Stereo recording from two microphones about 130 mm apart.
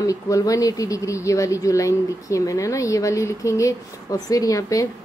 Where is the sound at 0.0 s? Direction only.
25° left (ahead or behind).